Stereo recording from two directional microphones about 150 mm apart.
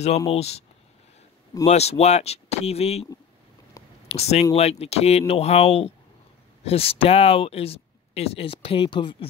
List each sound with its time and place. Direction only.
0.3 s speech: 45° left (ahead or behind)
1.7 s speech: 45° left (ahead or behind)
4.1 s speech: 45° left (ahead or behind)